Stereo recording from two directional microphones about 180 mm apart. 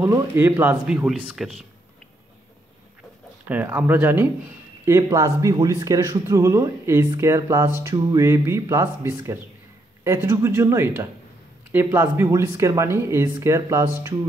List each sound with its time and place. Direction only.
0.0 s speech: 15° right (ahead or behind)
3.4 s speech: 10° right (ahead or behind)